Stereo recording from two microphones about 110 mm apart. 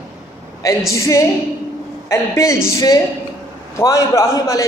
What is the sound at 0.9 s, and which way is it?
A man's voice, 30° left (ahead or behind).